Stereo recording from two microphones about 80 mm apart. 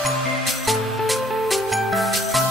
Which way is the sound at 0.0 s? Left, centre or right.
Centre.